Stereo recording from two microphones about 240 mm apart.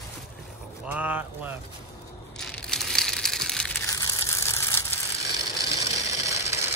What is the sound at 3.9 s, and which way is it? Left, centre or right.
Crushing, centre.